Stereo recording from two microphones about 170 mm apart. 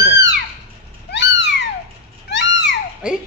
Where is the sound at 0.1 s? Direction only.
90° left.